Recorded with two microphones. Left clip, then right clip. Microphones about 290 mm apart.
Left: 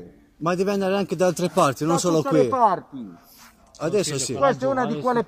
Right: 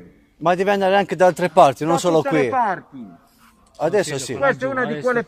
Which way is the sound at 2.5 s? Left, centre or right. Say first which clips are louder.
Left 1 dB; right.